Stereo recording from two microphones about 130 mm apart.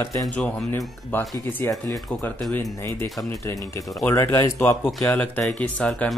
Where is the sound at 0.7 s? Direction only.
20° left (ahead or behind).